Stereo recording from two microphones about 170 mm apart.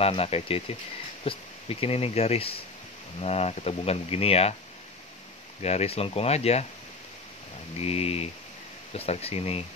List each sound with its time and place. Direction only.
0.0 s speech: 35° left (ahead or behind)
5.6 s speech: 40° left (ahead or behind)
7.8 s speech: 35° left (ahead or behind)